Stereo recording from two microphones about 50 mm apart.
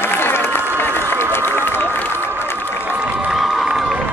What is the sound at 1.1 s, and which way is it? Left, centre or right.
Run, left.